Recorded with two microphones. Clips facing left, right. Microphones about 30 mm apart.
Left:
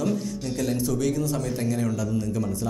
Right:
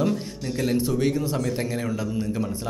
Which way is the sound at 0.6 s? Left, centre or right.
Right.